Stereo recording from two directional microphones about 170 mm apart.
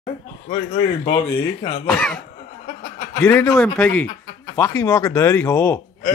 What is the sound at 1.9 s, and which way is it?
A man's voice, 5° left (ahead or behind).